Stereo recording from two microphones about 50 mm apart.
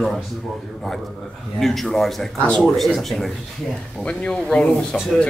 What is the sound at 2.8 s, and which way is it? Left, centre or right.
Speech, centre.